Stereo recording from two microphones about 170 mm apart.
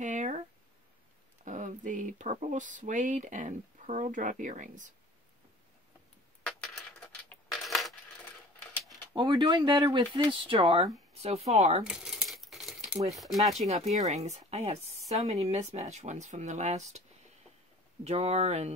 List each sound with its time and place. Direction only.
0.0 s a sound: 45° right (ahead or behind)
1.4 s speech: 50° right (ahead or behind)
7.2 s coin: centre (ahead or behind)
9.1 s speech: 25° right (ahead or behind)
11.8 s a sound: 5° right (ahead or behind)
13.1 s speech: centre (ahead or behind)
13.7 s speech: 40° right (ahead or behind)
18.0 s speech: 40° right (ahead or behind)